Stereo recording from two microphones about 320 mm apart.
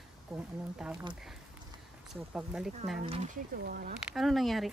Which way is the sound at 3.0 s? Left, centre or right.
Right.